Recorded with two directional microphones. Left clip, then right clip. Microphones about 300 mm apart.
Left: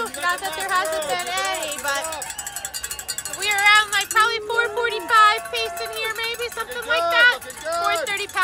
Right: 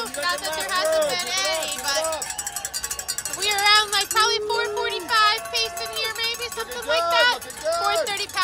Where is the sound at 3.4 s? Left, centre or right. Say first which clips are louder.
Left 2 dB; centre.